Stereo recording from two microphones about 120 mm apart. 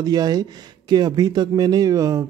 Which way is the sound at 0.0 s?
35° right (ahead or behind).